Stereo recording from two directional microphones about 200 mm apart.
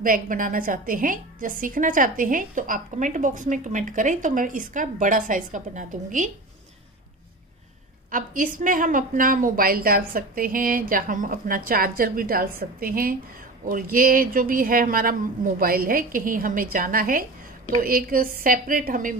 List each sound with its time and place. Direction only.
0.0 s a woman's voice: 45° right (ahead or behind)
8.1 s a woman's voice: 40° right (ahead or behind)